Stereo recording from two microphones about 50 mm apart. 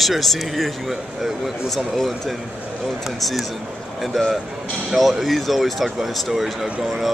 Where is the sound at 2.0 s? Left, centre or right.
Centre.